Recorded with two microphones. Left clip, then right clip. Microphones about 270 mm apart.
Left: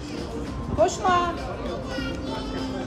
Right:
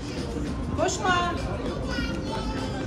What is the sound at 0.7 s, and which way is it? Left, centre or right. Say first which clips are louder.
Speech: left 4 dB; left.